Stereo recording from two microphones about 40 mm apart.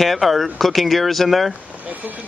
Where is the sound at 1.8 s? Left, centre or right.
Right.